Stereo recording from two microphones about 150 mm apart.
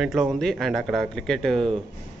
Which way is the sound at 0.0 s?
Centre (ahead or behind).